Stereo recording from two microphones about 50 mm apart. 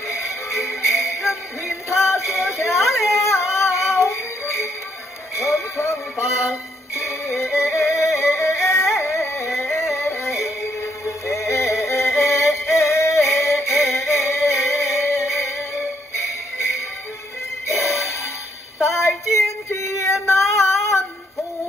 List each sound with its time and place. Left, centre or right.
0.5 s music: left
2.3 s a sound: left
3.9 s music: left
7.2 s music: centre
7.5 s music: left
9.0 s music: left
9.5 s music: centre
9.9 s music: left
13.7 s music: centre
13.9 s music: left
17.8 s music: left
18.8 s female singing: left